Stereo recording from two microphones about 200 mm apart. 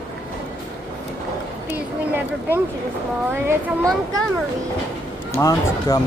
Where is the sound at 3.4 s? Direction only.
10° right (ahead or behind).